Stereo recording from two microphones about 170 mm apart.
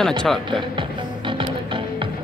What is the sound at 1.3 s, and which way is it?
Music, 30° right (ahead or behind).